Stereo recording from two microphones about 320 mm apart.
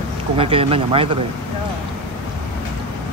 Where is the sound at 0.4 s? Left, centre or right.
Centre.